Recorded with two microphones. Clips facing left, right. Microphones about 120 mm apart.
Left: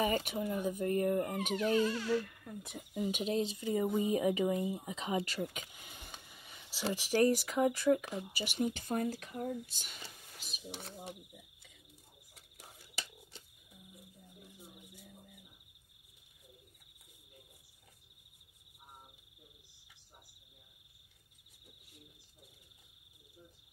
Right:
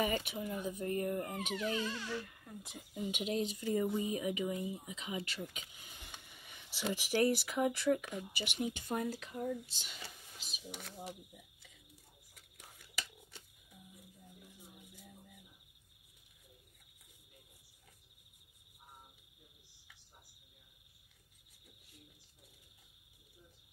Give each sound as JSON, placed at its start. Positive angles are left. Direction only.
{"t": 0.0, "sound": "speech", "side_deg": 45}
{"t": 2.2, "sound": "speech", "side_deg": 60}
{"t": 3.0, "sound": "speech", "side_deg": 40}
{"t": 3.6, "sound": "speech", "side_deg": 20}
{"t": 10.7, "sound": "speech", "side_deg": 30}
{"t": 12.4, "sound": "a sound", "side_deg": 30}